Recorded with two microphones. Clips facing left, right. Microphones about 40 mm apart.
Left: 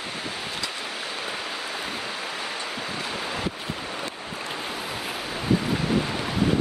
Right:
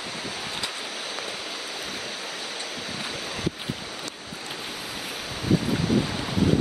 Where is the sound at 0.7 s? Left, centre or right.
Left.